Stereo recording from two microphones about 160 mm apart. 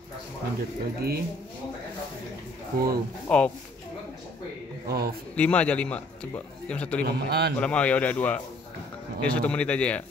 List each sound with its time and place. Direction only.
0.6 s speech: 75° right (ahead or behind)
3.3 s a man's voice: 5° left (ahead or behind)
4.8 s speech: 75° right (ahead or behind)
5.3 s a man's voice: 5° left (ahead or behind)
7.1 s a man's voice: 90° right
7.5 s a man's voice: 5° left (ahead or behind)